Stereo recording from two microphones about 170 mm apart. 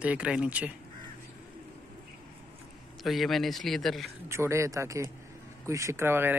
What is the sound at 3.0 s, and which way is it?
Speech, centre (ahead or behind).